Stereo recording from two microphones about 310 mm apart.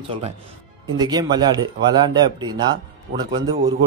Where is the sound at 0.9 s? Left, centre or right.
Centre.